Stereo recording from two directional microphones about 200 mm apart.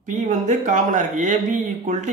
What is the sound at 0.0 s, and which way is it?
Speech, 40° right (ahead or behind).